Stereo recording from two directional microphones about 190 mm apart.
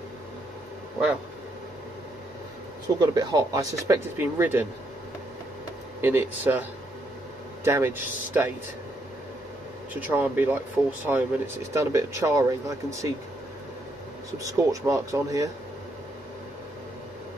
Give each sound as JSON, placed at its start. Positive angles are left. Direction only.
{"t": 3.0, "sound": "speech", "side_deg": -20}
{"t": 5.9, "sound": "speech", "side_deg": -10}
{"t": 7.6, "sound": "speech", "side_deg": -15}
{"t": 9.9, "sound": "speech", "side_deg": -10}
{"t": 14.4, "sound": "speech", "side_deg": -15}